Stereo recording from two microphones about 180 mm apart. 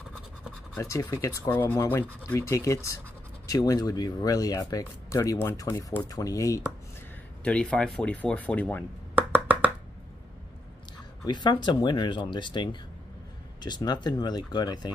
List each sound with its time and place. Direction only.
0.7 s speech: 15° left (ahead or behind)
7.4 s speech: 5° left (ahead or behind)
9.1 s a sound: 10° right (ahead or behind)
11.2 s speech: 25° left (ahead or behind)
13.6 s speech: 25° left (ahead or behind)